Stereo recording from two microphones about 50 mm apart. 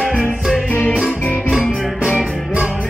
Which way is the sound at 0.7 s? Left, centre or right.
Left.